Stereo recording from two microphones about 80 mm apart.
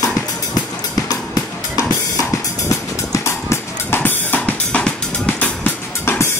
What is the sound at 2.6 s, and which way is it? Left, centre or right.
Music, left.